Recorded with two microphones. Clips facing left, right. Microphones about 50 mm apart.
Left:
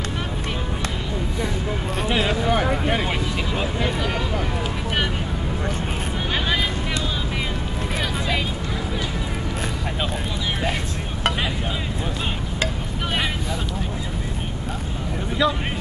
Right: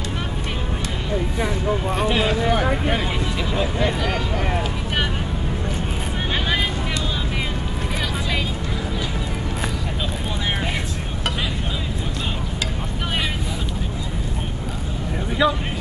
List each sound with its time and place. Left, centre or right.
2.0 s speech: centre
15.4 s speech: centre